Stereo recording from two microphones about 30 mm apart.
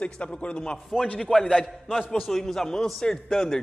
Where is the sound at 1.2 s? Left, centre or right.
Centre.